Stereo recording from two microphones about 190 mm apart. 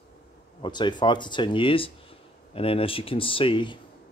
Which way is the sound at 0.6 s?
25° left (ahead or behind).